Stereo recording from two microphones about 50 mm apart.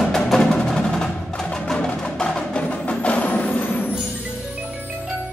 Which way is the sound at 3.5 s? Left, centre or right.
Left.